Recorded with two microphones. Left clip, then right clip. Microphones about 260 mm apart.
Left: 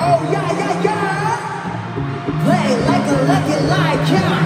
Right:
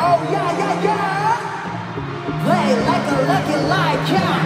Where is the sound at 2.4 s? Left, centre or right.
Centre.